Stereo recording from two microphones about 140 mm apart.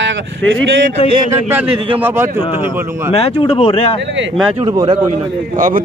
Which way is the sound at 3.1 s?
45° left (ahead or behind).